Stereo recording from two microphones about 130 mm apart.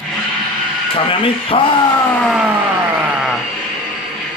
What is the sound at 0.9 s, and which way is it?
Speech, 45° left (ahead or behind).